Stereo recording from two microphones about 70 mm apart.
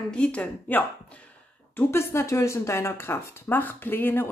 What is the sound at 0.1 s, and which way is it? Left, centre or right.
Speech, centre.